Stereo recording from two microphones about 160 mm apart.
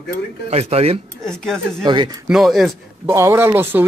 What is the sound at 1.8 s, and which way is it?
Speech, 25° right (ahead or behind).